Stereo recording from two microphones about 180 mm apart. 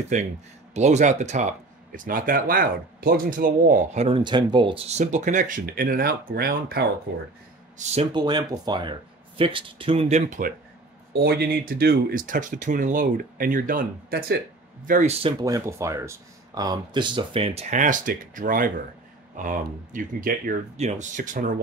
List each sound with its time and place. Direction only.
0.1 s speech: 40° right (ahead or behind)
1.9 s speech: 50° right (ahead or behind)
4.2 s speech: 25° right (ahead or behind); by 6.9 s 55° right (ahead or behind)
7.7 s speech: 35° right (ahead or behind)
8.1 s speech: 25° right (ahead or behind); by 10.5 s 40° right (ahead or behind)
11.2 s speech: 65° right (ahead or behind); by 15.1 s 45° right (ahead or behind)
15.4 s speech: 20° right (ahead or behind); by 20.5 s 50° right (ahead or behind)
20.7 s speech: 40° right (ahead or behind)